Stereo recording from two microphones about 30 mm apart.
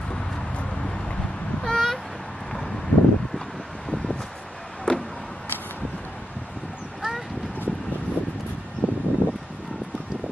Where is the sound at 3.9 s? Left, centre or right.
Centre.